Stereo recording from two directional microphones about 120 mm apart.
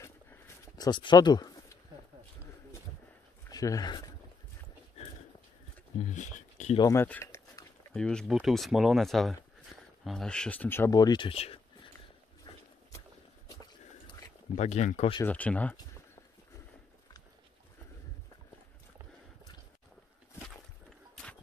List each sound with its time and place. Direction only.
0.7 s speech: 35° left (ahead or behind)
3.4 s speech: 30° left (ahead or behind)
5.9 s a sound: 90° left
6.8 s speech: 25° left (ahead or behind)
7.1 s speech: 15° left (ahead or behind)
10.9 s speech: 35° left (ahead or behind); by 11.6 s 55° left (ahead or behind)
14.5 s speech: 70° left (ahead or behind)
15.2 s speech: 10° left (ahead or behind)